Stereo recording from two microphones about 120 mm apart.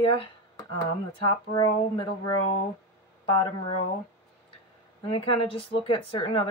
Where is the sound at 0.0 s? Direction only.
50° left (ahead or behind).